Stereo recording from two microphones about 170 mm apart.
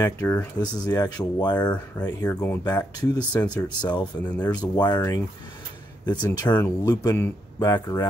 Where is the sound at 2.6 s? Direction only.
25° left (ahead or behind).